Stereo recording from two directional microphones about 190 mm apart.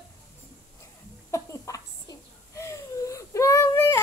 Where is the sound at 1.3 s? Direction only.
15° left (ahead or behind).